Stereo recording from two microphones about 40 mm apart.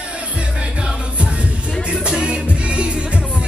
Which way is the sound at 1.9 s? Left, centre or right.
Right.